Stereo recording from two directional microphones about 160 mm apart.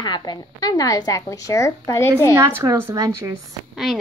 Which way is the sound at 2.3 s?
15° right (ahead or behind).